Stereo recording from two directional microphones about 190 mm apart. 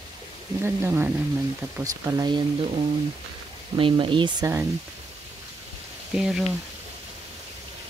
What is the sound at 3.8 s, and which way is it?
Speech, 25° right (ahead or behind).